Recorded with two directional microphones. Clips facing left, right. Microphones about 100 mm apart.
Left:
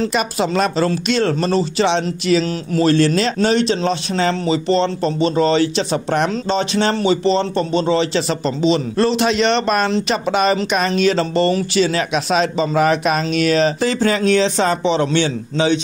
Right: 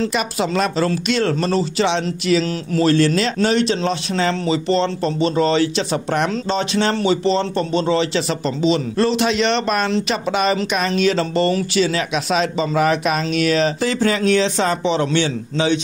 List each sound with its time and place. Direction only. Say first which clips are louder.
0.1 s speech: left 2 dB; 35° left (ahead or behind)
9.8 s speech: left 1 dB; 25° left (ahead or behind)
10.1 s speech: left 3 dB; 40° left (ahead or behind)